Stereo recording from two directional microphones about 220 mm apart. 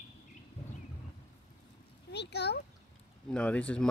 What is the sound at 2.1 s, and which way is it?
Speech, 50° left (ahead or behind).